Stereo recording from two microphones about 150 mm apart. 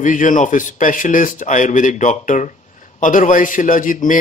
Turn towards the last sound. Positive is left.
turn(degrees=65)  # may be behind; listen again after turning